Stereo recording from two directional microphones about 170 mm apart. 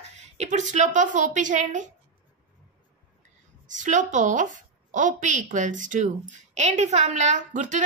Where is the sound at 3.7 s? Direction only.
45° right (ahead or behind).